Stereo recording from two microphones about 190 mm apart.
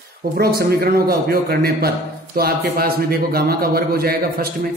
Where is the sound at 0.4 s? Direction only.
55° right (ahead or behind).